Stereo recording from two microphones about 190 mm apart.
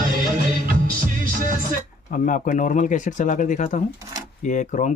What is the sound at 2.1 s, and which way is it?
Speech, 45° left (ahead or behind).